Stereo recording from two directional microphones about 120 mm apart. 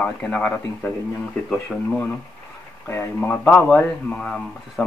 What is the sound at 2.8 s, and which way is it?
Speech, 20° left (ahead or behind).